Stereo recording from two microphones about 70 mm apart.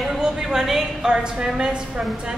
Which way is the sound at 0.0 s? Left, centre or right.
Centre.